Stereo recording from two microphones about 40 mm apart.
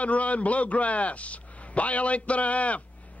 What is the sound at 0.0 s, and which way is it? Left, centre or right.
A man's voice, left.